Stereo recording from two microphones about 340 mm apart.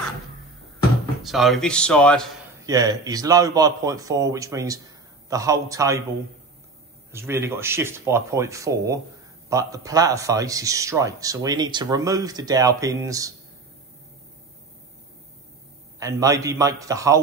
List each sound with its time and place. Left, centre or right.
1.2 s speech: centre
2.6 s speech: centre
7.1 s speech: centre
16.0 s speech: centre